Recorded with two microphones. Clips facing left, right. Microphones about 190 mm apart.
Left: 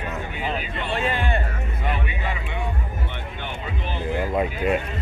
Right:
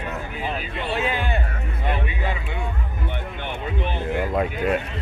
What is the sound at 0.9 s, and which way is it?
Speech, 5° right (ahead or behind).